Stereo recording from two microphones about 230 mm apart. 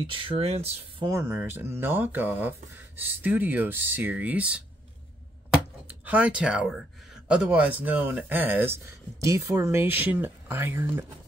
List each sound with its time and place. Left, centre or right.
0.0 s speech: right
1.0 s speech: centre
6.0 s speech: centre